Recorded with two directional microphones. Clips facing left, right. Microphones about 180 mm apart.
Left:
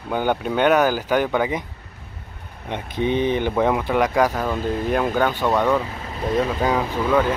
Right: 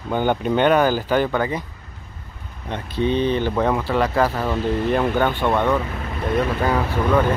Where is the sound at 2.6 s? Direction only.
15° left (ahead or behind).